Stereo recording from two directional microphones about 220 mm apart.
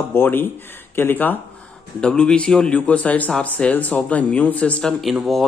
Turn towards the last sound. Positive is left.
turn(degrees=0)  # may be behind; listen again after turning